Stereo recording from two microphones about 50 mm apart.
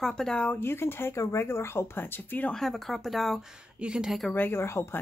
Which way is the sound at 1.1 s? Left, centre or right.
Left.